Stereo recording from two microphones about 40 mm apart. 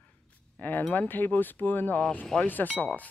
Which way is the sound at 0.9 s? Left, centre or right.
Left.